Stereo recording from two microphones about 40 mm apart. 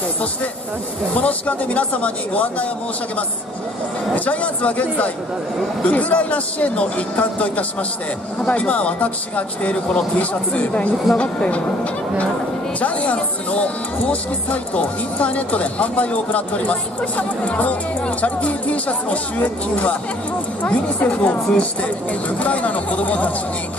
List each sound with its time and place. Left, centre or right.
1.1 s speech: left
4.1 s speech: left
12.8 s speech: left
15.1 s speech: left